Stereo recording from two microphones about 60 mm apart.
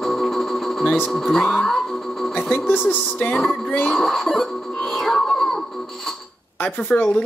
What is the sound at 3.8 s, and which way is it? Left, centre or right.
Speech, centre.